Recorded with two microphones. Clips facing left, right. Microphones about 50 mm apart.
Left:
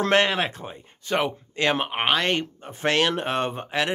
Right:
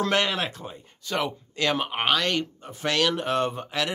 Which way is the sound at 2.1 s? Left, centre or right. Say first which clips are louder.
Left 2 dB; left.